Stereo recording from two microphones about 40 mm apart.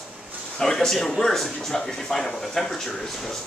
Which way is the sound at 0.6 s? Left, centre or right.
Centre.